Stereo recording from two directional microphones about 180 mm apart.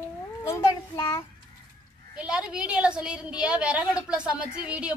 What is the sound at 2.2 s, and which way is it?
A woman's voice, 5° right (ahead or behind).